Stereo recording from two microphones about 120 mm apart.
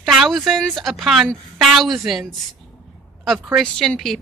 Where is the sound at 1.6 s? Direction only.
5° right (ahead or behind).